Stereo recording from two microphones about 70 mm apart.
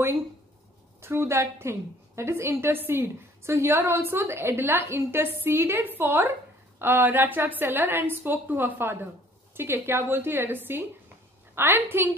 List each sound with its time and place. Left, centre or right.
1.0 s a woman's voice: right